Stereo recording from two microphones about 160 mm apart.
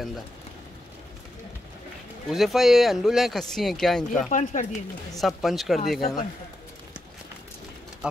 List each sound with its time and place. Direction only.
2.2 s speech: centre (ahead or behind)
4.3 s speech: 50° left (ahead or behind)
5.2 s speech: centre (ahead or behind)
8.0 s speech: 5° right (ahead or behind)